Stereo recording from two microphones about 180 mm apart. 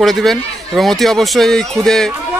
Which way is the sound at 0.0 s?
Centre (ahead or behind).